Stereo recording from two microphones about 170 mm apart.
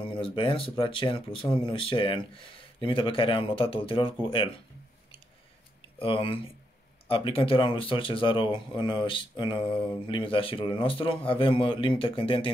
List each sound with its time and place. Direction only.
0.0 s speech: 30° left (ahead or behind)
5.9 s speech: 30° left (ahead or behind)